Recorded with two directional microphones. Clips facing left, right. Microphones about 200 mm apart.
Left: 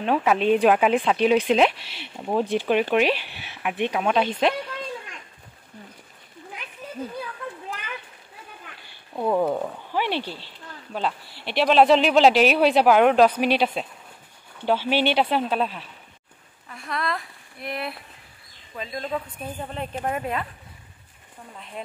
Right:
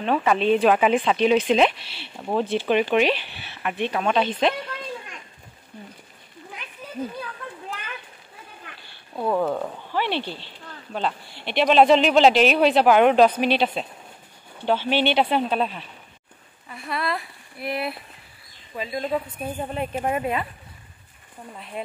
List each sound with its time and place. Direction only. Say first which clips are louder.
0.0 s speech: even; 5° left (ahead or behind)
9.1 s speech: left 1 dB; 5° left (ahead or behind)
16.6 s a sound: right 1 dB; 5° right (ahead or behind)
18.8 s speech: right 3 dB; 10° right (ahead or behind)
21.8 s speech: right 3 dB; 5° right (ahead or behind)